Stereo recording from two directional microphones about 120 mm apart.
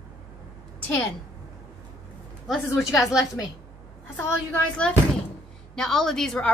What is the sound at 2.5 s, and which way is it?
Speech, centre (ahead or behind).